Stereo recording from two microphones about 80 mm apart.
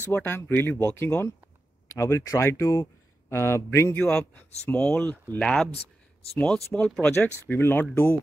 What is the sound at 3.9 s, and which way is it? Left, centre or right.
Speech, centre.